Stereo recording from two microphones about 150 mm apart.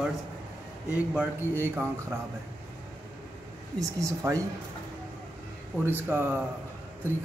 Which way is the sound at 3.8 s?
20° right (ahead or behind).